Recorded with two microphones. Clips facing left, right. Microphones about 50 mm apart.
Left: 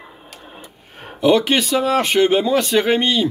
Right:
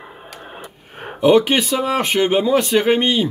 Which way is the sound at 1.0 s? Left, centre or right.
Centre.